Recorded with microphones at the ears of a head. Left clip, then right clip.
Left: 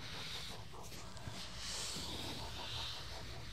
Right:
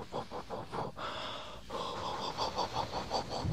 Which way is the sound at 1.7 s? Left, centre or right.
Right.